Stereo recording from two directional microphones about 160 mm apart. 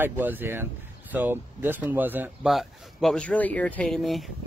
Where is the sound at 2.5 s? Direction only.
Centre (ahead or behind).